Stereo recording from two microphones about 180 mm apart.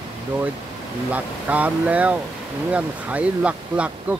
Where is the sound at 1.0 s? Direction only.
10° right (ahead or behind).